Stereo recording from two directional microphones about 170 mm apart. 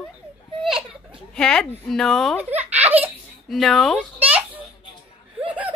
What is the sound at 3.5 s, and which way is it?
Speech, centre (ahead or behind).